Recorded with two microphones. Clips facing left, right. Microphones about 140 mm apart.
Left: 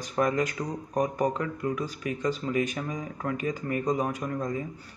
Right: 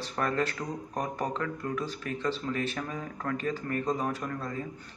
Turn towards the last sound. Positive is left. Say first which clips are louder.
# left 3 dB
turn(degrees=15)  # may be behind; listen again after turning